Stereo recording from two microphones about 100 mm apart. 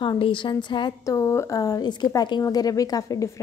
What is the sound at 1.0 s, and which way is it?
Speech, 30° left (ahead or behind).